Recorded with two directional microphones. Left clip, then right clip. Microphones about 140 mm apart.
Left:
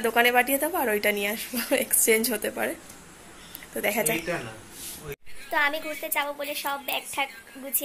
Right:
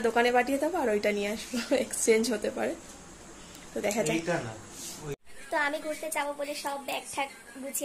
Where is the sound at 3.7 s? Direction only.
Centre (ahead or behind).